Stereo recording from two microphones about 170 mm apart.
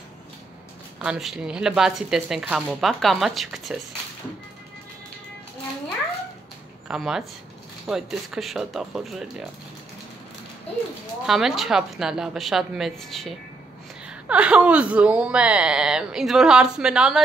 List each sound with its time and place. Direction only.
1.0 s speech: 5° right (ahead or behind)
6.9 s speech: 5° right (ahead or behind)
11.2 s speech: centre (ahead or behind)